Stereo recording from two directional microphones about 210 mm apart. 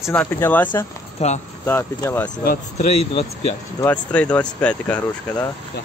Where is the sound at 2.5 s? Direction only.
30° left (ahead or behind).